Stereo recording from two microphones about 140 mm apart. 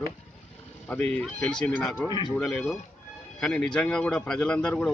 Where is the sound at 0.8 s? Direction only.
10° left (ahead or behind).